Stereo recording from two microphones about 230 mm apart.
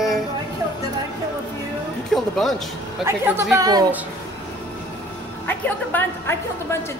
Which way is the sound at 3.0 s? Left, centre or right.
Centre.